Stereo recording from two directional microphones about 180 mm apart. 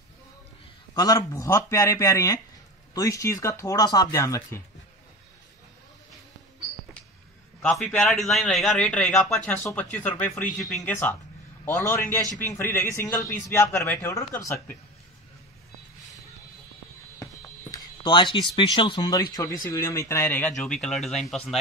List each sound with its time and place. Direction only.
0.9 s a man's voice: 20° left (ahead or behind)
7.6 s a man's voice: 5° left (ahead or behind)
17.2 s fire alarm: 15° left (ahead or behind)
18.0 s a man's voice: 25° left (ahead or behind); by 21.4 s centre (ahead or behind)